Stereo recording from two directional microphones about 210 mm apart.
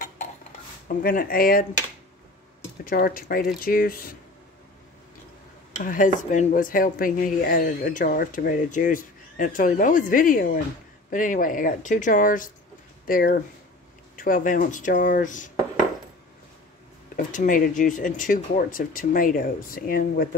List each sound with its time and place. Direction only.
0.8 s speech: 45° left (ahead or behind)
2.8 s speech: 45° left (ahead or behind)
5.9 s speech: 40° left (ahead or behind)
17.3 s speech: 40° left (ahead or behind)